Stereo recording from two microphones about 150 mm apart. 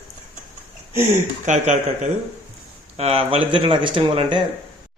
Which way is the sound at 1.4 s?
50° right (ahead or behind).